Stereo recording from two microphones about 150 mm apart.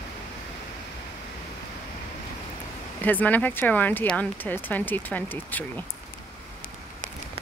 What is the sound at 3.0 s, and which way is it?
Speech, 10° left (ahead or behind).